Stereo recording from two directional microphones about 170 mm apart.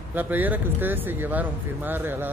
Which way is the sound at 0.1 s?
10° right (ahead or behind).